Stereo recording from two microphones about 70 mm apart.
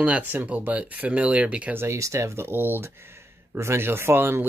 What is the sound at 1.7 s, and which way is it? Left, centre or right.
Speech, right.